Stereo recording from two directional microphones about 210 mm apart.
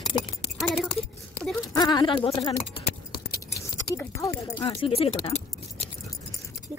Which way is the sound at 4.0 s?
15° left (ahead or behind).